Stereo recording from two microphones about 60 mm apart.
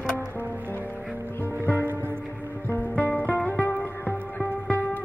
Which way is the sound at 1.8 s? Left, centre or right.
Right.